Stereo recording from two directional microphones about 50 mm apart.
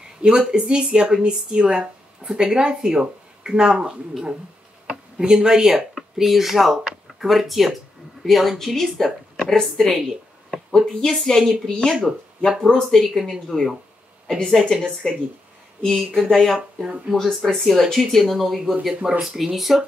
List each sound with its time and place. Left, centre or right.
0.2 s a woman's voice: centre
11.1 s a woman's voice: centre
13.2 s speech: centre
14.4 s a woman's voice: centre
16.5 s speech: centre